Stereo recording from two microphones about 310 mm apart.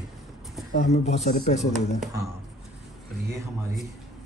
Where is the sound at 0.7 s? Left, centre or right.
Left.